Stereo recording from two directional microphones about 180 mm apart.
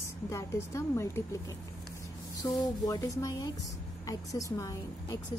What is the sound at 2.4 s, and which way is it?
A woman's voice, 20° left (ahead or behind).